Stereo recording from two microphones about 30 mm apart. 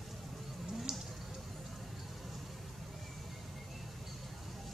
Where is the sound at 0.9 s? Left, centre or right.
Right.